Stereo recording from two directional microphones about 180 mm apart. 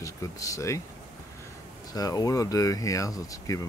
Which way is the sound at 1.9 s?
20° left (ahead or behind).